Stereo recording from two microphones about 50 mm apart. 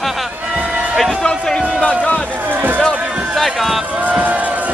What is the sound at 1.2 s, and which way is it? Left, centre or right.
Speech, centre.